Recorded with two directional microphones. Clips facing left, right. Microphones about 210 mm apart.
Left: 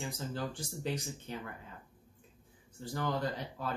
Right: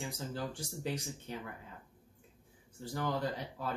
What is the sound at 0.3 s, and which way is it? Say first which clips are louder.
Speech: left 1 dB; 10° right (ahead or behind).